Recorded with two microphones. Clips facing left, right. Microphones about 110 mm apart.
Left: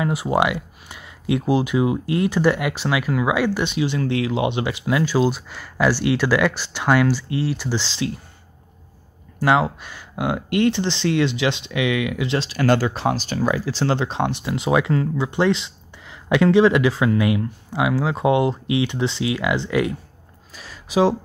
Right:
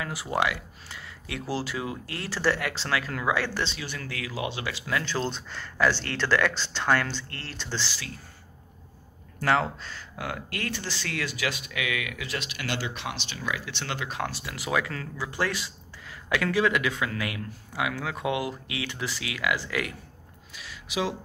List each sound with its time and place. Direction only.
0.0 s speech: 20° left (ahead or behind)
9.4 s speech: 15° left (ahead or behind)
20.5 s a sound: 40° left (ahead or behind)